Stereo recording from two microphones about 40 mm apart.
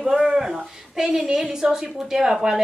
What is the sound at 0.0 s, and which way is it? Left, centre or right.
A woman's voice, centre.